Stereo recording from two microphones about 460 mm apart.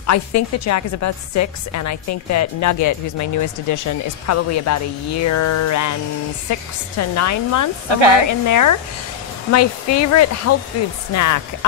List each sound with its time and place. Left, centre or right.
0.0 s a woman's voice: left